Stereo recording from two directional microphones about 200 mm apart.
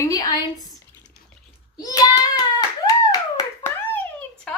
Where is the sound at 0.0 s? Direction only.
20° left (ahead or behind).